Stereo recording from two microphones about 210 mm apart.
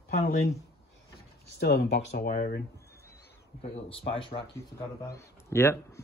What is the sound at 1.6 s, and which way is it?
Speech, 50° left (ahead or behind).